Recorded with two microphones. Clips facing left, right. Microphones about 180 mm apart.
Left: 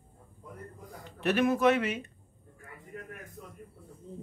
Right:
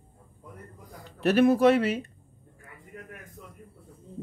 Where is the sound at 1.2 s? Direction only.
35° right (ahead or behind).